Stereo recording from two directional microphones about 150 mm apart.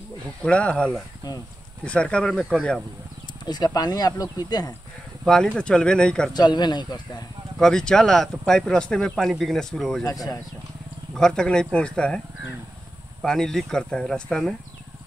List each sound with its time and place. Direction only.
0.4 s speech: 5° left (ahead or behind)
3.4 s speech: 25° left (ahead or behind)
5.2 s speech: 5° left (ahead or behind)
6.3 s speech: 30° left (ahead or behind)
7.5 s speech: 5° left (ahead or behind)
10.0 s speech: 25° left (ahead or behind)
11.1 s speech: 5° left (ahead or behind)
13.2 s speech: 5° left (ahead or behind)